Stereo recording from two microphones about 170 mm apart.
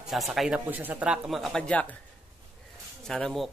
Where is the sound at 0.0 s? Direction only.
Centre (ahead or behind).